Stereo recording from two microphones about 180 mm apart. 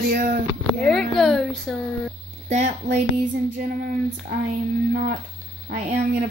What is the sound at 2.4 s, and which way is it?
Speech, 40° right (ahead or behind).